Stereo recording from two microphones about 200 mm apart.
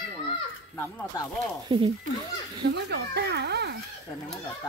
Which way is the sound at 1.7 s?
25° right (ahead or behind).